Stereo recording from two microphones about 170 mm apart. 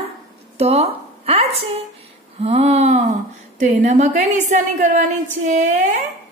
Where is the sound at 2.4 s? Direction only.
40° right (ahead or behind).